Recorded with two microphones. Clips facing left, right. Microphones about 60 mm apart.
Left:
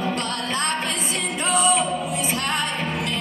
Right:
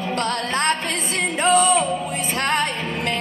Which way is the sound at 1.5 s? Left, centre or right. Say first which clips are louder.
Right 4 dB; right.